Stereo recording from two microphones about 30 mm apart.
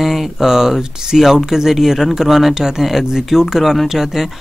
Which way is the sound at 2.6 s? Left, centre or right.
Centre.